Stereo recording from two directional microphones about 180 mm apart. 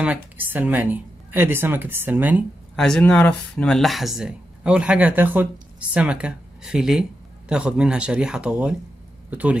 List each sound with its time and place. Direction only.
0.0 s speech: 10° right (ahead or behind)
2.7 s speech: 5° left (ahead or behind)